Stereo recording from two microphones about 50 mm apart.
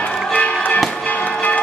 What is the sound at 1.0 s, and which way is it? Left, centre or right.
Music, left.